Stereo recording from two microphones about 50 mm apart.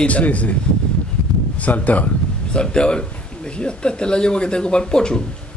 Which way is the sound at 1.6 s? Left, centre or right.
Left.